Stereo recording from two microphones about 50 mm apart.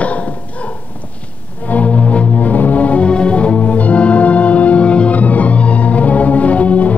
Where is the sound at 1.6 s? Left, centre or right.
Left.